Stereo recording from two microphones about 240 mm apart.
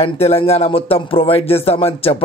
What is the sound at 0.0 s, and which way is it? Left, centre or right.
Speech, left.